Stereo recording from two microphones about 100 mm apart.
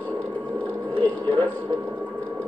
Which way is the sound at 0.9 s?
15° left (ahead or behind).